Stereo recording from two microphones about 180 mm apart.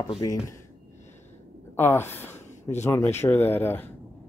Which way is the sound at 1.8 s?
15° left (ahead or behind).